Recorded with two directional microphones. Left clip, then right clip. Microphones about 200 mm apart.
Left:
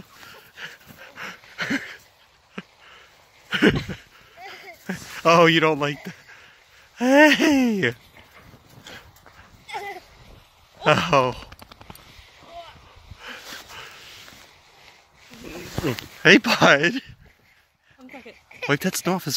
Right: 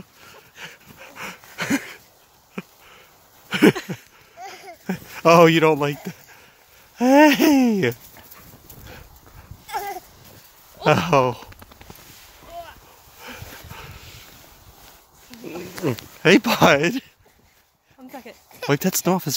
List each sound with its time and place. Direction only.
0.2 s a sound: 20° right (ahead or behind)
7.0 s speech: 25° right (ahead or behind)
9.7 s dog: 25° right (ahead or behind)
10.8 s speech: 25° right (ahead or behind)
11.5 s a sound: 45° left (ahead or behind)
13.2 s dog: 30° right (ahead or behind)
16.2 s speech: 15° right (ahead or behind)
18.7 s speech: 30° right (ahead or behind)